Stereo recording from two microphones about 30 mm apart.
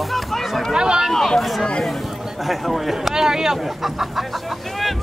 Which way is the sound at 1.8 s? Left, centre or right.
Centre.